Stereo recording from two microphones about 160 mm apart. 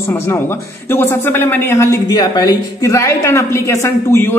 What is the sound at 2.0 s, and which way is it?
A woman's voice, 25° left (ahead or behind).